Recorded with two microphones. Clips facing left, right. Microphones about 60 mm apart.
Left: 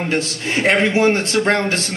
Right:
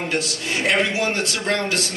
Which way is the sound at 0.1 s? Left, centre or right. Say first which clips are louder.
Left 4 dB; left.